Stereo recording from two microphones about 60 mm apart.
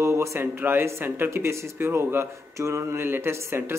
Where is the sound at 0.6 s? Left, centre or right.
Right.